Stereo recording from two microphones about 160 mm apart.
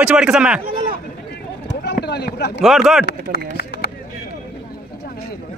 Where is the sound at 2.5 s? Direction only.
Centre (ahead or behind).